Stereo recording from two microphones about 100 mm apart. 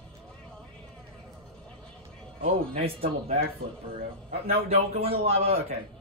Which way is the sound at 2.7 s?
75° right (ahead or behind).